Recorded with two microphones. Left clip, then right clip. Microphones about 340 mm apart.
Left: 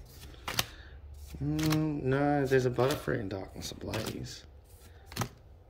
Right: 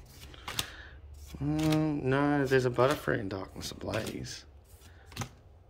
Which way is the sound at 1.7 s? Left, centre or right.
Centre.